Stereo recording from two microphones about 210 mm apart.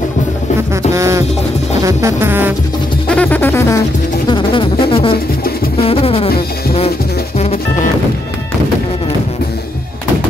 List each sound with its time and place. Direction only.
0.9 s music: 15° right (ahead or behind)
3.1 s music: 5° left (ahead or behind)
4.3 s music: 25° left (ahead or behind)
5.8 s a sound: 30° left (ahead or behind)
7.3 s music: 30° left (ahead or behind)